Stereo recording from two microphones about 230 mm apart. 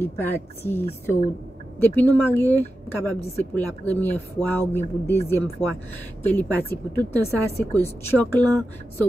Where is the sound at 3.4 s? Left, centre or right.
Centre.